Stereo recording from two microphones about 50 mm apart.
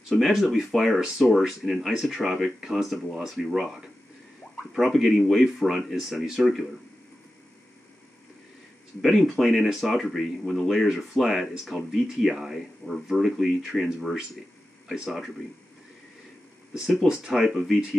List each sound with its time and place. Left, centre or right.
0.2 s speech: centre
9.0 s speech: centre
15.0 s speech: centre
16.7 s speech: centre